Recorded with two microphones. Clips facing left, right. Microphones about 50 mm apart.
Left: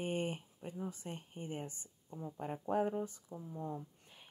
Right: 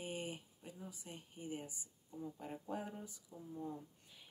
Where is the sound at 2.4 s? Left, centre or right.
Left.